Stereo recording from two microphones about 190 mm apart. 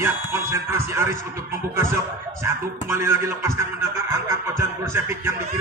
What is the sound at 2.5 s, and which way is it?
Speech, 15° right (ahead or behind).